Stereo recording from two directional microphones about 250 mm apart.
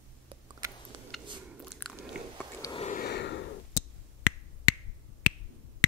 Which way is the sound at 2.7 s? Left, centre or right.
Left.